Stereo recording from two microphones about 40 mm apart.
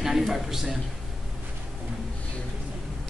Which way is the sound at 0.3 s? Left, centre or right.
Centre.